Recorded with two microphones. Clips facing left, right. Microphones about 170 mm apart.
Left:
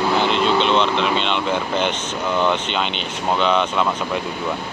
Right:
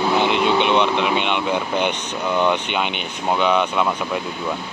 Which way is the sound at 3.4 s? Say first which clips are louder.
Even; 10° right (ahead or behind).